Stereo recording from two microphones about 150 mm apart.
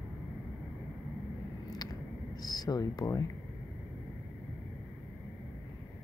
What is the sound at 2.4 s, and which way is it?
Speech, 25° left (ahead or behind).